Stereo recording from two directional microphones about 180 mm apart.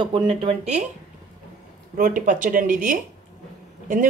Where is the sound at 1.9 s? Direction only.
45° right (ahead or behind).